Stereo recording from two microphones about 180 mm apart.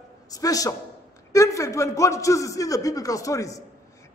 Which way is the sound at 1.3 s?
15° left (ahead or behind).